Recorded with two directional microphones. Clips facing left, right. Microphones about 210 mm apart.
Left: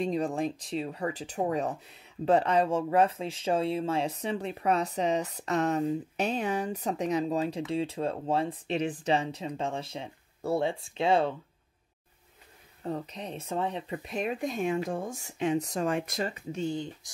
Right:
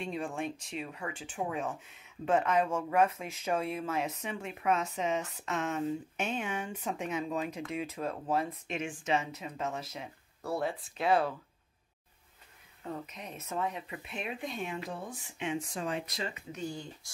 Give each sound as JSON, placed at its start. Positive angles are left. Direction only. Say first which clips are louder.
{"t": 0.0, "sound": "speech", "louder": "left 7 dB", "side_deg": 40}
{"t": 12.8, "sound": "speech", "louder": "left 6 dB", "side_deg": 35}
{"t": 16.3, "sound": "speech", "louder": "left 7 dB", "side_deg": 25}